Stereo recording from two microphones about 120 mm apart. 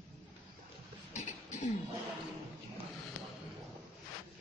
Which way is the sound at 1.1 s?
75° left (ahead or behind).